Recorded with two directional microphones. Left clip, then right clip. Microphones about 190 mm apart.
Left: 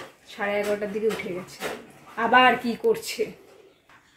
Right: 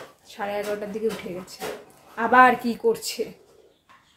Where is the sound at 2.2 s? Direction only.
10° right (ahead or behind).